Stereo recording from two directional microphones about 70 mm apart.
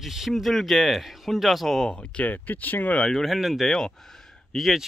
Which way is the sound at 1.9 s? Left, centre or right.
Centre.